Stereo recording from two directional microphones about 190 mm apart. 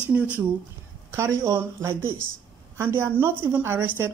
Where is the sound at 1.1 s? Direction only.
15° right (ahead or behind).